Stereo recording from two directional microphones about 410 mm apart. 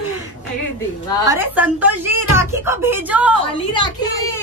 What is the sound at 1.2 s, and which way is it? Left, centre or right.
Speech, centre.